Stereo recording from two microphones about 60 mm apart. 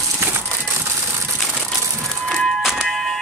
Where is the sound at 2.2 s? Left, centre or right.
Centre.